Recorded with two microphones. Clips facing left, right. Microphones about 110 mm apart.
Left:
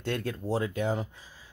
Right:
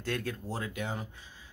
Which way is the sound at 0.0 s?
30° left (ahead or behind).